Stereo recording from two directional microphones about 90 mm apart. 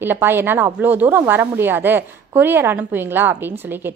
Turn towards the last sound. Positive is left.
turn(degrees=-20)  # may be behind; listen again after turning